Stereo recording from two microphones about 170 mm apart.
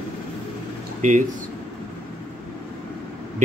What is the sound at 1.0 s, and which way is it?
Speech, 45° right (ahead or behind).